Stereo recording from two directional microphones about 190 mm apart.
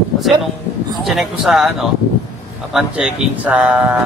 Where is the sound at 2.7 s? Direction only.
5° right (ahead or behind).